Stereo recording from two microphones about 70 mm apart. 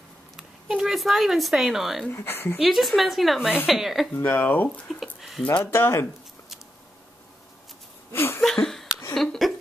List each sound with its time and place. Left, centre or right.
0.4 s a sound: centre
0.9 s a woman's voice: centre
2.1 s speech: left
2.6 s a woman's voice: centre
4.1 s speech: left
4.6 s speech: centre
5.6 s speech: left
8.1 s laughter: left
8.4 s a sound: centre